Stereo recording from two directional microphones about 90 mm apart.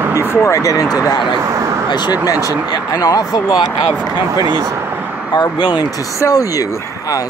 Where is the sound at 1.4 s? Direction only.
40° right (ahead or behind).